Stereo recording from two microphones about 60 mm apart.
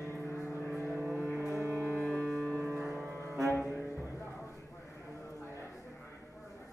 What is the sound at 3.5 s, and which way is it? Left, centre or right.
Music, left.